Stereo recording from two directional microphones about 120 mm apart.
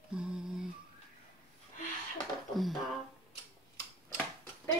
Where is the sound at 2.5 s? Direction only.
Centre (ahead or behind).